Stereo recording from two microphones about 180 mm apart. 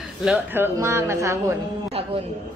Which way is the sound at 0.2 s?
5° right (ahead or behind).